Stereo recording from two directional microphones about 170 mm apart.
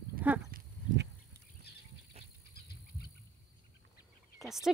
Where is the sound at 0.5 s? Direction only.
60° right (ahead or behind).